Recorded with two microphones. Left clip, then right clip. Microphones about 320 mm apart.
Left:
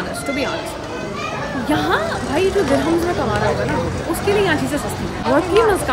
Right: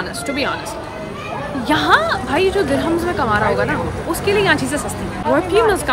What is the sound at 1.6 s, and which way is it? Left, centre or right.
Speech, centre.